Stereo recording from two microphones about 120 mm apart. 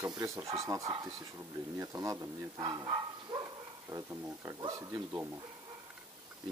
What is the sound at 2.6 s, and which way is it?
Bow-wow, 35° right (ahead or behind).